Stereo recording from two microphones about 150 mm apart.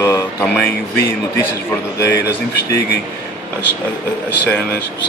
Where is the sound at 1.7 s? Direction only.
15° left (ahead or behind).